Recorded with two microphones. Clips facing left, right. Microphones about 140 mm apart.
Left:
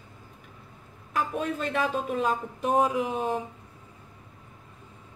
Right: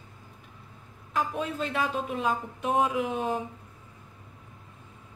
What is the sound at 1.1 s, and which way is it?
A woman's voice, 40° left (ahead or behind).